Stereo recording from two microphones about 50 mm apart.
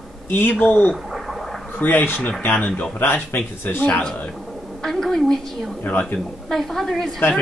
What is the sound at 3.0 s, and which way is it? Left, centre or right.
A man's voice, left.